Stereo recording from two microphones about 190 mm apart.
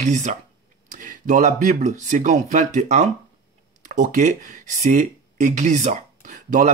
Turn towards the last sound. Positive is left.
turn(degrees=-40)  # may be behind; listen again after turning